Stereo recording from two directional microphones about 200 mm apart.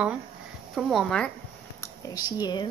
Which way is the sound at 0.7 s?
Centre (ahead or behind).